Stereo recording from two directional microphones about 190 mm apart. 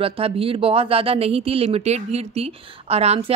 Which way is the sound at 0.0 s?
30° right (ahead or behind).